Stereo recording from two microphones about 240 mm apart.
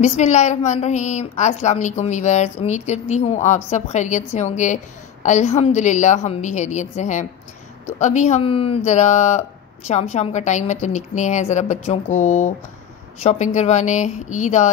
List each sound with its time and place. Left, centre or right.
0.0 s speech: left